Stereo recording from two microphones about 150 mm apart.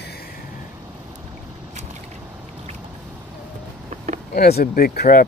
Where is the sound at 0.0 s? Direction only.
90° left.